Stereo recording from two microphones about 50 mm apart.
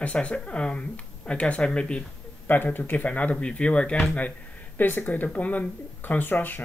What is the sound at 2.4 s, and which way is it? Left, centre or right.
Speech, left.